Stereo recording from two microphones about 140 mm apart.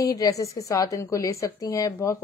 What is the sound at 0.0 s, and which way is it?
Speech, 25° left (ahead or behind).